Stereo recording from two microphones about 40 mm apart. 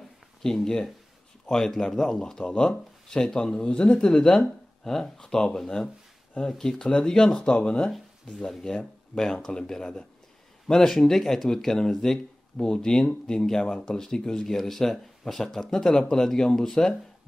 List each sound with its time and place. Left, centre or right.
0.4 s speech: centre
8.3 s speech: centre